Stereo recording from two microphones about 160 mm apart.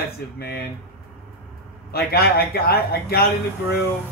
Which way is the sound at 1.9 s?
75° left (ahead or behind).